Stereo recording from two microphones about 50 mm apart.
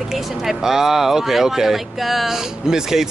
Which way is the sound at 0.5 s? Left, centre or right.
Centre.